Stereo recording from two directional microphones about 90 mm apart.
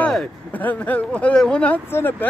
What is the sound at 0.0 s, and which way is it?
Speech, 15° left (ahead or behind).